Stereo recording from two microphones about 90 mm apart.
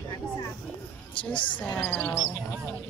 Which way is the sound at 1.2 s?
15° left (ahead or behind).